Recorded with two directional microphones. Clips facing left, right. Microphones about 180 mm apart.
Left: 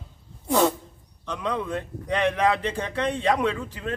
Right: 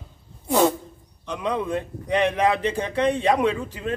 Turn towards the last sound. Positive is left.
turn(degrees=-15)  # may be behind; listen again after turning